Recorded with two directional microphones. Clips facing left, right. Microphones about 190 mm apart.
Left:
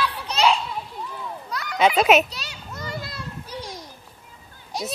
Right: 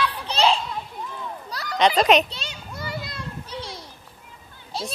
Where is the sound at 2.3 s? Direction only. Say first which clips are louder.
Right 1 dB; 25° right (ahead or behind).